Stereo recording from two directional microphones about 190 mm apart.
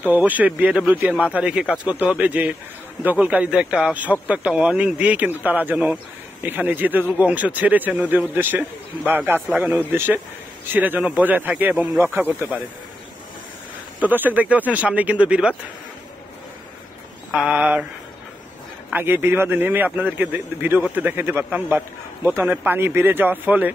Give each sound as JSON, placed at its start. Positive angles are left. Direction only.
{"t": 0.0, "sound": "a man's voice", "side_deg": -10}
{"t": 13.9, "sound": "a man's voice", "side_deg": -10}
{"t": 17.3, "sound": "a man's voice", "side_deg": -5}
{"t": 18.9, "sound": "a man's voice", "side_deg": -10}